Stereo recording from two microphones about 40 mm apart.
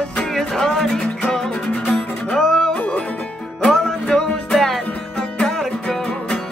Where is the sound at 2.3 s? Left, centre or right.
Centre.